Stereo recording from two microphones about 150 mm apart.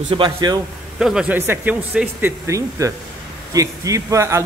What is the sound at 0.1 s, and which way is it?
Speech, 30° right (ahead or behind).